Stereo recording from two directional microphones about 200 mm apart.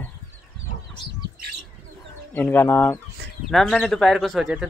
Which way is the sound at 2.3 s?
10° left (ahead or behind).